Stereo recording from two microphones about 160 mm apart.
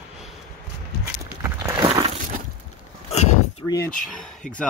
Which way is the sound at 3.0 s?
45° left (ahead or behind).